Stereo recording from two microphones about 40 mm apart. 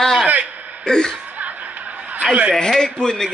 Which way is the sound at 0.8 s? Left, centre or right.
Centre.